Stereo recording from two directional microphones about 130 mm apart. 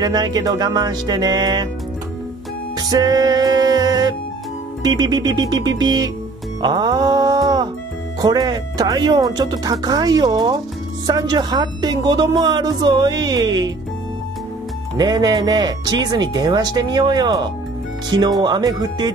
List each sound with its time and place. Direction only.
0.0 s speech: 30° right (ahead or behind)
2.9 s music: 30° right (ahead or behind)
4.8 s speech: 30° right (ahead or behind)
6.6 s music: 35° right (ahead or behind)
8.2 s speech: 30° right (ahead or behind)
15.0 s speech: 30° right (ahead or behind)